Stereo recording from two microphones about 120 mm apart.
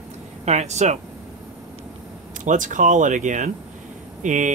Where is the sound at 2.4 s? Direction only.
90° right.